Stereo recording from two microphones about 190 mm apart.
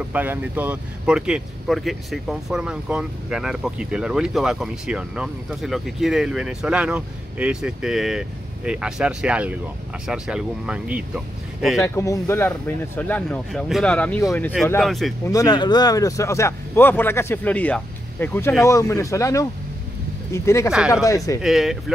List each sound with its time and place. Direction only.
0.1 s speech: 10° right (ahead or behind)
11.8 s speech: 15° left (ahead or behind)
15.2 s speech: 20° left (ahead or behind)
21.4 s speech: centre (ahead or behind)